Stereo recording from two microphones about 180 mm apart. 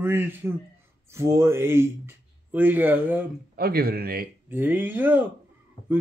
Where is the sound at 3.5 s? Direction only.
55° right (ahead or behind).